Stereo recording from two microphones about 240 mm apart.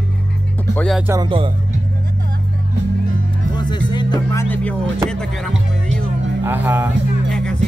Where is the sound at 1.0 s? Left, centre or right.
Centre.